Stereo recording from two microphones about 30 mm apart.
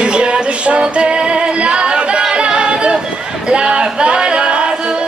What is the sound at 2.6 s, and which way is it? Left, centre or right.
Music, right.